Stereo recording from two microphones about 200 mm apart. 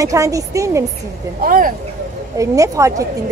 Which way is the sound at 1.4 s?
45° right (ahead or behind).